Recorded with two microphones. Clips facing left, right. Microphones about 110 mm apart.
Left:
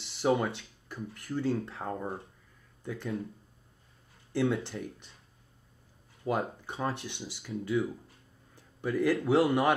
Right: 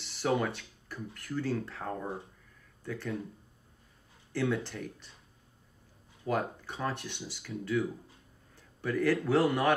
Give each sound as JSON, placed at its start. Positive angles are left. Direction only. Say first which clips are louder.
{"t": 0.0, "sound": "speech", "louder": "left 2 dB", "side_deg": 25}
{"t": 4.3, "sound": "speech", "louder": "left 2 dB", "side_deg": 20}
{"t": 6.2, "sound": "speech", "louder": "left 1 dB", "side_deg": 20}
{"t": 8.5, "sound": "a sound", "louder": "left 1 dB", "side_deg": 15}
{"t": 9.2, "sound": "speech", "louder": "left 2 dB", "side_deg": 25}